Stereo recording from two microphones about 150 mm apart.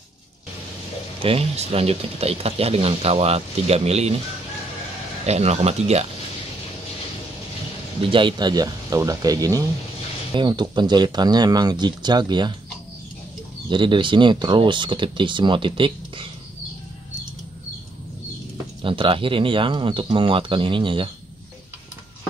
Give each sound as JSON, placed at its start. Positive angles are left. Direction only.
{"t": 1.2, "sound": "speech", "side_deg": -40}
{"t": 5.2, "sound": "speech", "side_deg": -45}
{"t": 8.1, "sound": "speech", "side_deg": -35}
{"t": 13.7, "sound": "speech", "side_deg": -30}
{"t": 18.8, "sound": "speech", "side_deg": -35}